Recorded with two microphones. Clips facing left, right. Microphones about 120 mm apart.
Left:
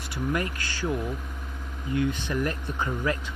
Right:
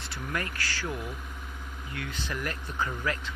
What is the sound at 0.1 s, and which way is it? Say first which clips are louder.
Speech: left 6 dB; 20° left (ahead or behind).